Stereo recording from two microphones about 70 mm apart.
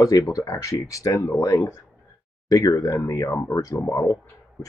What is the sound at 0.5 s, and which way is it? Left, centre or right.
Speech, left.